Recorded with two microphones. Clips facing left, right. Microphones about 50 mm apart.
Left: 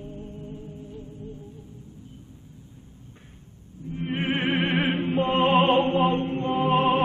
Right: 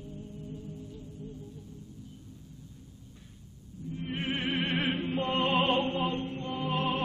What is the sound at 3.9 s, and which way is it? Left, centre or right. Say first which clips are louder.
Opera: left 7 dB; left.